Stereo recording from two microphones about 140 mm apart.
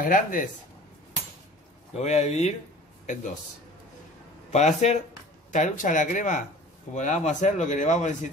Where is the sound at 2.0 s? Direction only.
50° left (ahead or behind).